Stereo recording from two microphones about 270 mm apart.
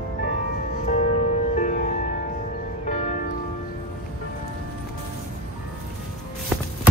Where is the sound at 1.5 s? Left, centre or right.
Left.